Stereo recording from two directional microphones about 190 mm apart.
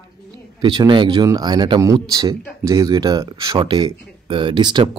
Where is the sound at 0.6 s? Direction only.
25° right (ahead or behind).